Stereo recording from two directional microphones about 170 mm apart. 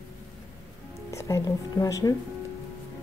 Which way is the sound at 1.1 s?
20° left (ahead or behind).